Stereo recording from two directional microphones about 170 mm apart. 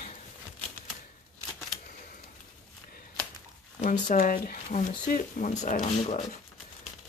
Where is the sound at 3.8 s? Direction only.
50° left (ahead or behind).